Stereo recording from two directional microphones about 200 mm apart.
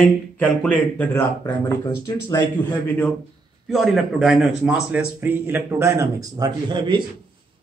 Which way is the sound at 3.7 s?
Centre (ahead or behind).